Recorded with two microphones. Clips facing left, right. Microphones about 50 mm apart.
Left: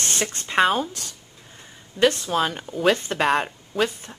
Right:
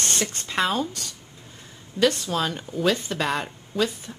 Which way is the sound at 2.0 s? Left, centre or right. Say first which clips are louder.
Left 2 dB; left.